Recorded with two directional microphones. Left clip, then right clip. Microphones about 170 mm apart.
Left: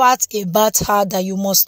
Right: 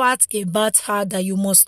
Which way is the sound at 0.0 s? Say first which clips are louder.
Left 5 dB; 20° right (ahead or behind).